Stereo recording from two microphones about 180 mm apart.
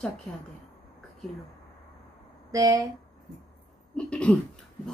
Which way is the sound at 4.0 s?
5° left (ahead or behind).